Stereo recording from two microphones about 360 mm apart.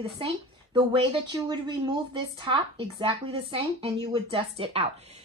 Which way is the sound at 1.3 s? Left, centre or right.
Centre.